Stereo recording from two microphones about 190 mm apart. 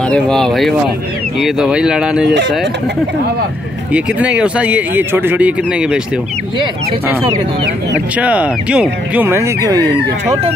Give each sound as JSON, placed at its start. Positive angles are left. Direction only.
{"t": 0.1, "sound": "speech", "side_deg": 5}
{"t": 3.9, "sound": "speech", "side_deg": -5}
{"t": 8.2, "sound": "speech", "side_deg": -5}